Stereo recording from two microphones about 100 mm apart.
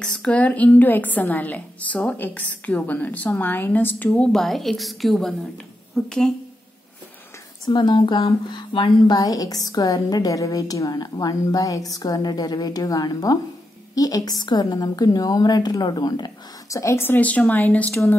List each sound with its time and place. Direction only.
0.0 s a woman's voice: 10° left (ahead or behind)
4.1 s a woman's voice: 5° left (ahead or behind)
7.6 s a woman's voice: 50° left (ahead or behind); by 17.9 s 15° left (ahead or behind)